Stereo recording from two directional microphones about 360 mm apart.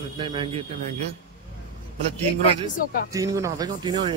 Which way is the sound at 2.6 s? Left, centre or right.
Centre.